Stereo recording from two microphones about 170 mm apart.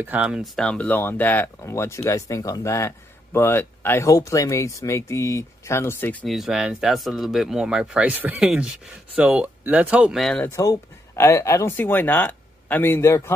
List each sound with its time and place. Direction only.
0.0 s speech: 10° right (ahead or behind); by 6.2 s 10° left (ahead or behind)
6.2 s speech: centre (ahead or behind); by 13.3 s 15° left (ahead or behind)